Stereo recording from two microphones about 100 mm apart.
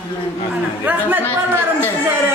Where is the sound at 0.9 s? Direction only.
20° right (ahead or behind).